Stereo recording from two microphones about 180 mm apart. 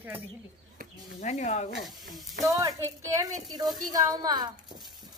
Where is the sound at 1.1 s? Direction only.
40° left (ahead or behind).